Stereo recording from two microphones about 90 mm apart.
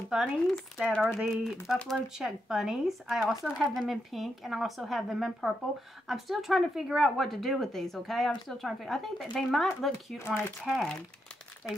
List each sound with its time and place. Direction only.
0.1 s speech: centre (ahead or behind)
10.1 s speech: 25° left (ahead or behind)
10.7 s speech: 5° left (ahead or behind)